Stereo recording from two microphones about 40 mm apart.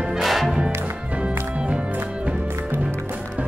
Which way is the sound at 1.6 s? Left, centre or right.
Right.